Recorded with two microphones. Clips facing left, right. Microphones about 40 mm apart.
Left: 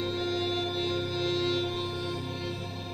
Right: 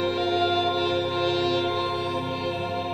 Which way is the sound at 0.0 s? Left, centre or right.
Right.